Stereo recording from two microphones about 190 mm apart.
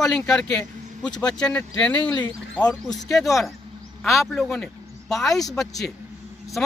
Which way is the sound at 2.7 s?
20° left (ahead or behind).